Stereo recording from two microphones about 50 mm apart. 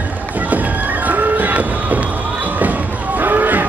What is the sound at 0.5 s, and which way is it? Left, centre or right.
Music, right.